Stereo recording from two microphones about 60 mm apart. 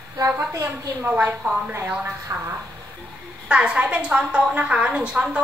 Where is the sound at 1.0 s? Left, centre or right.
Right.